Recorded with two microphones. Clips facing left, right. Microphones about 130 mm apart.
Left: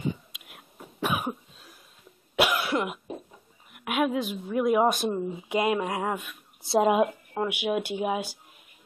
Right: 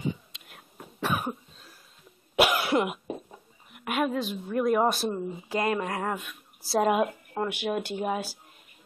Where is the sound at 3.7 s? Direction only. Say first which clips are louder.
Left 1 dB; 5° left (ahead or behind).